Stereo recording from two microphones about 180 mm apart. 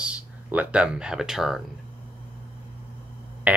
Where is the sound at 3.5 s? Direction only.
10° right (ahead or behind).